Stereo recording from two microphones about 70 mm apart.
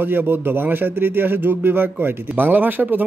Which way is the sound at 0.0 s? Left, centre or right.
Right.